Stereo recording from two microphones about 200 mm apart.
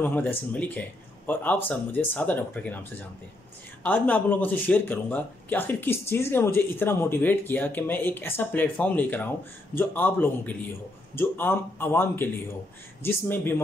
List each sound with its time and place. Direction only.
0.0 s speech: 10° left (ahead or behind)